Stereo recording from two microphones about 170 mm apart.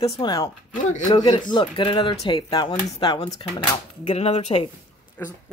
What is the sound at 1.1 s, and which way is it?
Speech, 25° left (ahead or behind).